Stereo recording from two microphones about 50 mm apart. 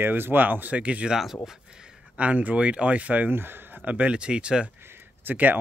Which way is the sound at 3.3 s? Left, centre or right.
Right.